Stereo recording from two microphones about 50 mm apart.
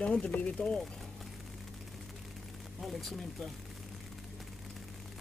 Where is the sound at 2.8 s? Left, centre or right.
Centre.